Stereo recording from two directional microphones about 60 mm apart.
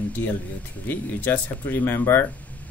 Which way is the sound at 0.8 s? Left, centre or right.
Left.